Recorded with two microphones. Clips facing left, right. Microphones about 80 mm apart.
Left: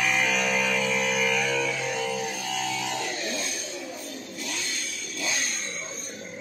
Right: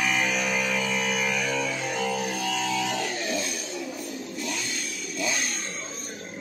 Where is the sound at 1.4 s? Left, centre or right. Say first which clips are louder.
Left 1 dB; right.